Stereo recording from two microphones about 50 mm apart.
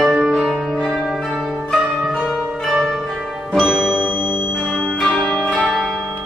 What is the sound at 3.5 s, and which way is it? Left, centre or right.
Music, centre.